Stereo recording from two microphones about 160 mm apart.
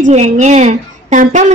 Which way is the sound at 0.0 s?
45° right (ahead or behind).